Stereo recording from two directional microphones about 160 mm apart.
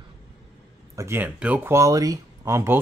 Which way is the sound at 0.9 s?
15° right (ahead or behind).